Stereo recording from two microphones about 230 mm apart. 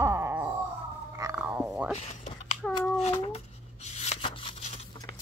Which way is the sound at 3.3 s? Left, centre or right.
Left.